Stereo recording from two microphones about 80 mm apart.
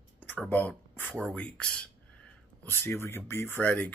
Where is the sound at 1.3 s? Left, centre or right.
Centre.